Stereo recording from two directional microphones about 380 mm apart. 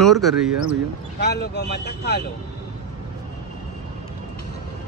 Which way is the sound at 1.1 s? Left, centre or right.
Left.